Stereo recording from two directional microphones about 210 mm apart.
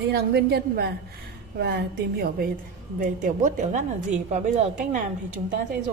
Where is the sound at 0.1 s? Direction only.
50° right (ahead or behind); by 5.0 s 35° right (ahead or behind).